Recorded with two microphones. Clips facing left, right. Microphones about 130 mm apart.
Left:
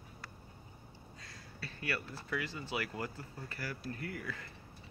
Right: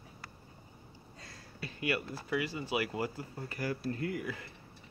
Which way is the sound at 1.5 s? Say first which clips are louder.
Right 5 dB; 15° right (ahead or behind).